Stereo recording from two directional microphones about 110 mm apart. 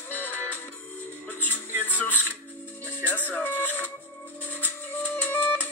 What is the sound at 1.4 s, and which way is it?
Music, 15° left (ahead or behind).